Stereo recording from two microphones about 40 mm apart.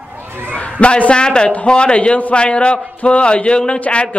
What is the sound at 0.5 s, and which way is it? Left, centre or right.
A man's voice, left.